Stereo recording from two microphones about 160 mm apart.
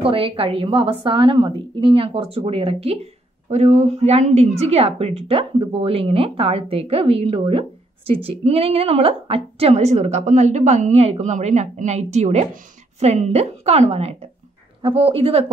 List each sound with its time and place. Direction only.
0.0 s a woman's voice: 35° right (ahead or behind)